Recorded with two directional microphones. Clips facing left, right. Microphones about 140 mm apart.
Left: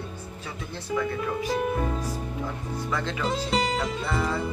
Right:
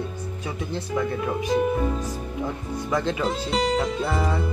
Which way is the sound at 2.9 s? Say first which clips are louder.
Right 6 dB; 20° right (ahead or behind).